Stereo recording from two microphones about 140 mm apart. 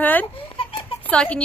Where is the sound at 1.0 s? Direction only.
10° left (ahead or behind).